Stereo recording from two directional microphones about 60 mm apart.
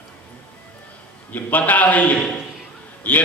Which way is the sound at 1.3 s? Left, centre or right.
Left.